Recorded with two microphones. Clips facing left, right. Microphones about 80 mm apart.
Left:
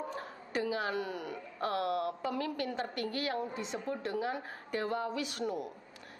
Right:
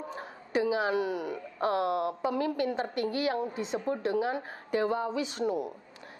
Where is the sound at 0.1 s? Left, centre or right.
Centre.